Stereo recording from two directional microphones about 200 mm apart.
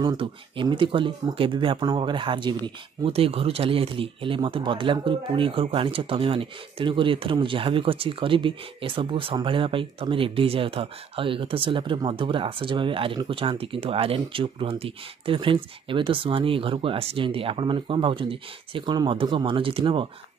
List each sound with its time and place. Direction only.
0.0 s speech: 25° right (ahead or behind)